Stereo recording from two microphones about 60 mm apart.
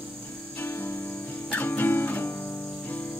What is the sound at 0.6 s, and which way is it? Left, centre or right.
Music, left.